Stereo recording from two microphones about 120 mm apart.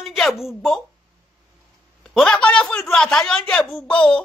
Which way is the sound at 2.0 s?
5° left (ahead or behind).